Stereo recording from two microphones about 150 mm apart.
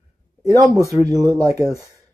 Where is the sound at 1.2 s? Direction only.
20° right (ahead or behind).